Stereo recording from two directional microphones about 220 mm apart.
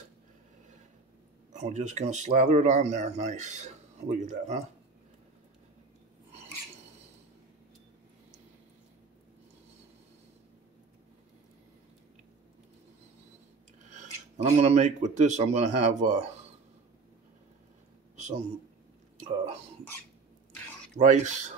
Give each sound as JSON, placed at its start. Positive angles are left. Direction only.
{"t": 1.5, "sound": "speech", "side_deg": -30}
{"t": 13.9, "sound": "speech", "side_deg": -30}
{"t": 18.1, "sound": "a sound", "side_deg": -30}
{"t": 19.1, "sound": "speech", "side_deg": -30}
{"t": 21.0, "sound": "speech", "side_deg": -35}